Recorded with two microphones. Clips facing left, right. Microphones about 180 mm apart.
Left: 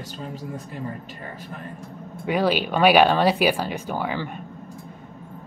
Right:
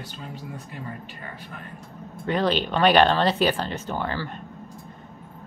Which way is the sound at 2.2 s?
10° left (ahead or behind).